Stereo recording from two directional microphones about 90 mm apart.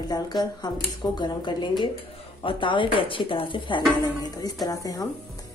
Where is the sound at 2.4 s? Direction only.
70° left (ahead or behind).